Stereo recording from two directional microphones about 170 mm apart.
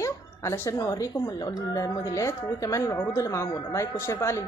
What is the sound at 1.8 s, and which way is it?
Speech, 20° left (ahead or behind).